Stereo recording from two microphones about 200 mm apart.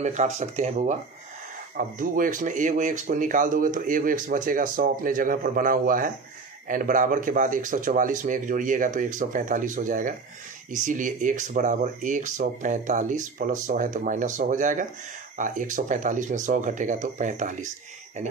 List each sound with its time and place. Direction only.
0.0 s speech: 35° right (ahead or behind)